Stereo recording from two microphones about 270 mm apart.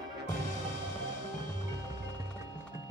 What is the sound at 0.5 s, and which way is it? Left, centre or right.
Music, right.